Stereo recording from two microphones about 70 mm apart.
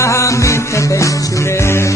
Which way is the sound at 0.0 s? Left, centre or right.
Left.